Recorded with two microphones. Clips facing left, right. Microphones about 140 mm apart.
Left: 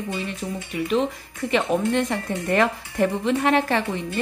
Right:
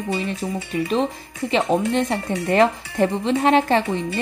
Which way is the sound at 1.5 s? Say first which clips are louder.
Right 2 dB; 25° right (ahead or behind).